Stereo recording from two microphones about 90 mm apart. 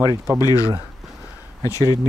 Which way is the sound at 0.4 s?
40° left (ahead or behind).